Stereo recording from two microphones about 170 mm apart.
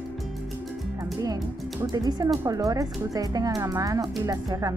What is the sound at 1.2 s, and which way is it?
Speech, 20° right (ahead or behind).